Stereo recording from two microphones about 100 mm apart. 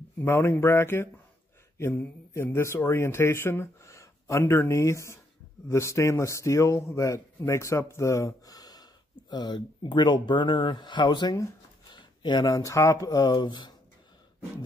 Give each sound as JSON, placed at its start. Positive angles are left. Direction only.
{"t": 0.2, "sound": "speech", "side_deg": 25}